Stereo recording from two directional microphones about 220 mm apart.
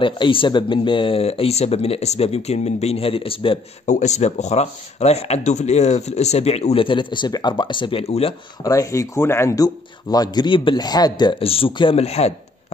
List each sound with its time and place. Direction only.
0.0 s speech: 25° left (ahead or behind)
8.6 s speech: 15° left (ahead or behind)